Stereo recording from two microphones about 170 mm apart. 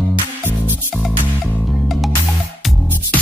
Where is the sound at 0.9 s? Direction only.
Centre (ahead or behind).